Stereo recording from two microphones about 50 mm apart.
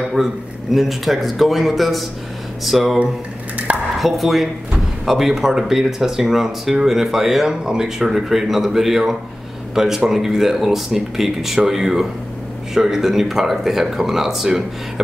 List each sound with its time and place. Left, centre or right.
0.1 s speech: centre
3.5 s dishes: right
4.0 s speech: centre